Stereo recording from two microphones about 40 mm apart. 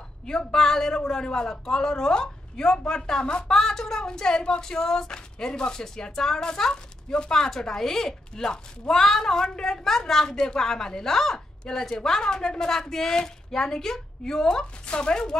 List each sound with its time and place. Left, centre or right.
0.3 s speech: centre